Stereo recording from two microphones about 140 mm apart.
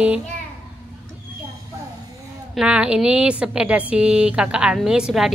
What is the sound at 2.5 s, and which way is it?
A woman's voice, 5° right (ahead or behind).